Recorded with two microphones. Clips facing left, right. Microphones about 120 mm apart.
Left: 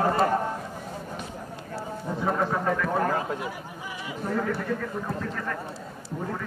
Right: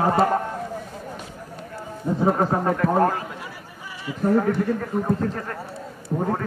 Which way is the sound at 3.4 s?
15° left (ahead or behind).